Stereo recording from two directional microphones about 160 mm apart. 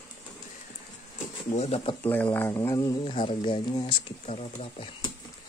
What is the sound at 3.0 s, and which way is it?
Speech, 35° left (ahead or behind).